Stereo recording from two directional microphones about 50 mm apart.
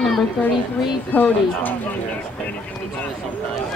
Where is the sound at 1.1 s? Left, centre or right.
Left.